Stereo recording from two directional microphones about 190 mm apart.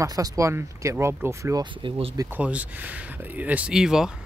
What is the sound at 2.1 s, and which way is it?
Speech, 10° right (ahead or behind).